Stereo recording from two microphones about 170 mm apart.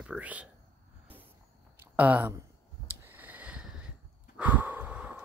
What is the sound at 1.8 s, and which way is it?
Speech, 10° right (ahead or behind).